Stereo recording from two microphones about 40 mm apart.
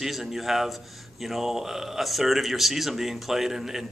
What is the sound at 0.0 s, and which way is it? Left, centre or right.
Speech, centre.